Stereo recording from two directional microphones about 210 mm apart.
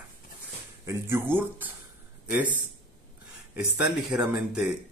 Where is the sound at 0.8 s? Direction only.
10° right (ahead or behind).